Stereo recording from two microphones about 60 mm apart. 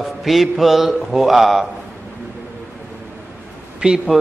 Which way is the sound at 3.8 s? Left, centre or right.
Centre.